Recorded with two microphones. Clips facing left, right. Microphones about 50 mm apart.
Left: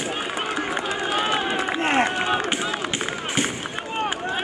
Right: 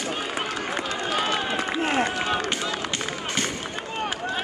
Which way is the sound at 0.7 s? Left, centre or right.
Centre.